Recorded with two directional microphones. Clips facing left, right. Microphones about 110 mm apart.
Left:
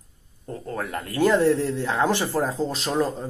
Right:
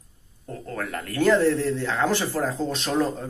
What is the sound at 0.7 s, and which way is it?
A man's voice, 20° left (ahead or behind).